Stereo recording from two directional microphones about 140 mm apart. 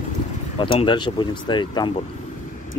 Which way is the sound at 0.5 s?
35° left (ahead or behind).